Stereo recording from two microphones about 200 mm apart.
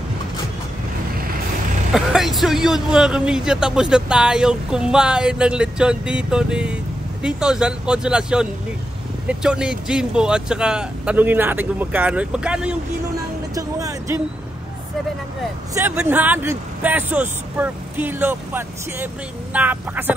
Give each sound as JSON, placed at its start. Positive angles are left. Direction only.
{"t": 1.9, "sound": "a man's voice", "side_deg": 0}
{"t": 13.6, "sound": "music", "side_deg": -15}
{"t": 15.7, "sound": "speech", "side_deg": -10}